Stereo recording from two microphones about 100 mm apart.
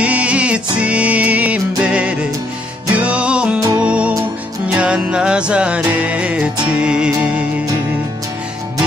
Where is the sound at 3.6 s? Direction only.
40° right (ahead or behind).